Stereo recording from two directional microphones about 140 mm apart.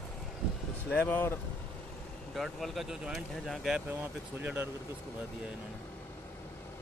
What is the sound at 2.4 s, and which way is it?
Speech, centre (ahead or behind).